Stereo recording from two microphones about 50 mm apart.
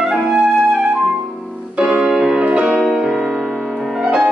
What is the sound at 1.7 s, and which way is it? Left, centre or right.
Music, centre.